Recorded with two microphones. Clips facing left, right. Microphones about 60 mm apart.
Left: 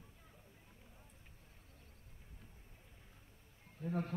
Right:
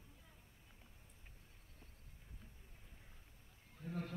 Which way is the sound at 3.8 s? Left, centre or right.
Left.